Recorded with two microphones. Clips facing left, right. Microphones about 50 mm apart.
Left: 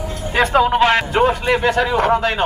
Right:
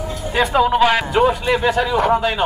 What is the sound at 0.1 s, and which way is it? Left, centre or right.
A man's voice, left.